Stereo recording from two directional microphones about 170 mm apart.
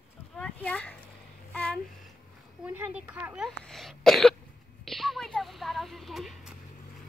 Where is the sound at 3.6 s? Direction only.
Centre (ahead or behind).